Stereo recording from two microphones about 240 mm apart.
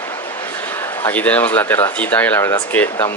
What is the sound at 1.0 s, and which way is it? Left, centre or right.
Speech, centre.